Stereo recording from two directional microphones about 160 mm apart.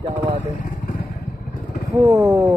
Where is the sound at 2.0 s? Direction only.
15° right (ahead or behind).